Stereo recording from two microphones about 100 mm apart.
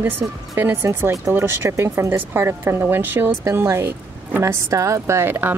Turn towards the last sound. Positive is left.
turn(degrees=-20)  # may be behind; listen again after turning